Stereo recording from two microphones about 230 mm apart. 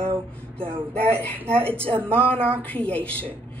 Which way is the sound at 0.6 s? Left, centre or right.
Right.